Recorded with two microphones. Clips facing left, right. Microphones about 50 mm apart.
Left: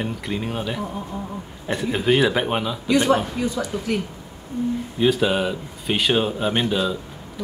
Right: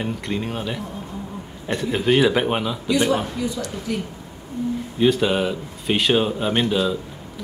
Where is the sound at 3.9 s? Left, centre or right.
Left.